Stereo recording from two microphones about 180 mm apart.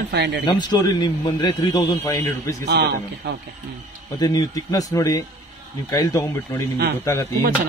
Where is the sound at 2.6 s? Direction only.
60° right (ahead or behind).